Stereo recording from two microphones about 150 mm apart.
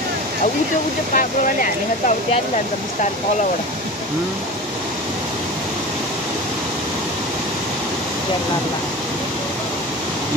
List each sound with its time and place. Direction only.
1.1 s speech: 65° left (ahead or behind)